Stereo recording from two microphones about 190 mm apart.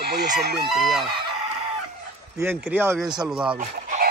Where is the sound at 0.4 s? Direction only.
60° right (ahead or behind).